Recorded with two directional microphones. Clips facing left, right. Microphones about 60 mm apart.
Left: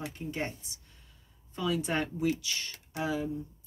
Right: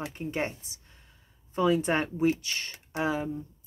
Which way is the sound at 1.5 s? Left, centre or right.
Right.